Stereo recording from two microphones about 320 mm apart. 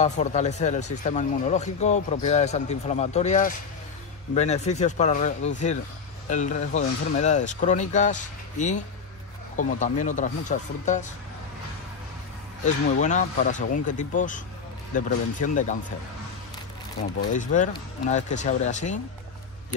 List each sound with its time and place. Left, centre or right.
0.0 s speech: left
12.6 s speech: left
17.3 s speech: left